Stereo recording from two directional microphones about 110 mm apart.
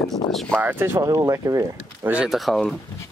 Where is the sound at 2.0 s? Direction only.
10° right (ahead or behind).